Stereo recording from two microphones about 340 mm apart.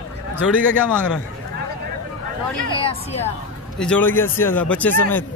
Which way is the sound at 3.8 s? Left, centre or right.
Centre.